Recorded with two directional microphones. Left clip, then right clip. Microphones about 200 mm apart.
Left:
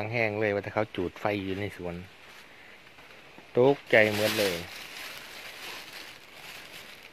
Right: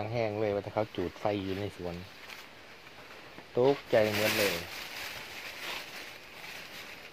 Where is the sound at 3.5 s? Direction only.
40° left (ahead or behind).